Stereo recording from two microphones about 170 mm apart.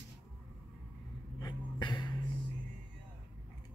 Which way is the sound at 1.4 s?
25° left (ahead or behind).